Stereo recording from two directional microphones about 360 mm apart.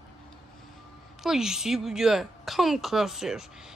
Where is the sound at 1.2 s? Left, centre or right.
Centre.